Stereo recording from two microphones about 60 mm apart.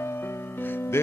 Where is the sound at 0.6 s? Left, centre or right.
Left.